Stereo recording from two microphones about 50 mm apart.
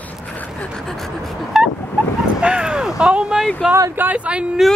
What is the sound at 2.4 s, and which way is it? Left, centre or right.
Bow-wow, centre.